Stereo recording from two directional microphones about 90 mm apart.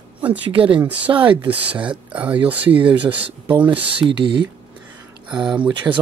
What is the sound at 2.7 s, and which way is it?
Speech, 75° right (ahead or behind).